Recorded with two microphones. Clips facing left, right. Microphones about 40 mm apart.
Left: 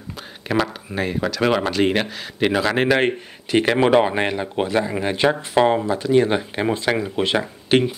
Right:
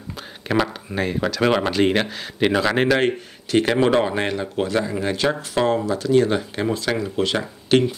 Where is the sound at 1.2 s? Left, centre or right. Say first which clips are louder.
Even; centre.